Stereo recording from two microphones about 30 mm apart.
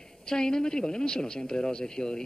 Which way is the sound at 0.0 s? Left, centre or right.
Centre.